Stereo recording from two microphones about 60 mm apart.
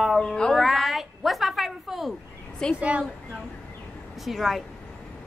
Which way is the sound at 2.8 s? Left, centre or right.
Right.